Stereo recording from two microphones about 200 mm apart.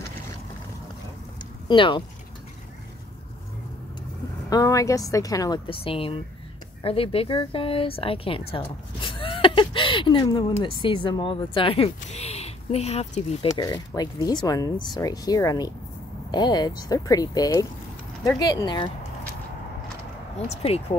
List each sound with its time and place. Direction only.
1.7 s speech: 25° left (ahead or behind)
4.5 s a woman's voice: 15° left (ahead or behind)
13.5 s speech: 20° left (ahead or behind)
20.3 s speech: 30° left (ahead or behind)